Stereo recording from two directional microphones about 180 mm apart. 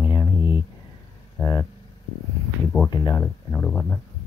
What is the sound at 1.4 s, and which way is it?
Speech, 15° left (ahead or behind).